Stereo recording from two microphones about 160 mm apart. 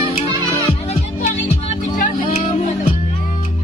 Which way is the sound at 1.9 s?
50° left (ahead or behind).